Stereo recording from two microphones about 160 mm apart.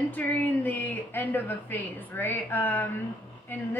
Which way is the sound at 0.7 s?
10° left (ahead or behind).